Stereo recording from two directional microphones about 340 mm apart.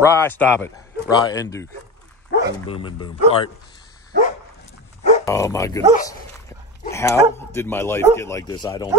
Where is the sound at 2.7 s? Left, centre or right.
Centre.